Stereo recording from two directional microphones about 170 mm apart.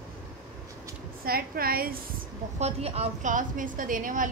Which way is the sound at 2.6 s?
40° right (ahead or behind).